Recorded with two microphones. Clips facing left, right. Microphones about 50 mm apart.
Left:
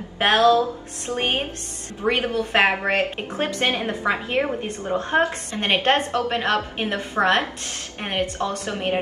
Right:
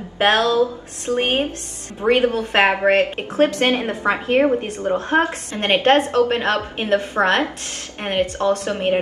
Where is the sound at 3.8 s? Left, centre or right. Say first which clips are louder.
Right 3 dB; centre.